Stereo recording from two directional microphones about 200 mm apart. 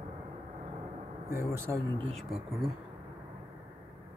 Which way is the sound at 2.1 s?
Centre (ahead or behind).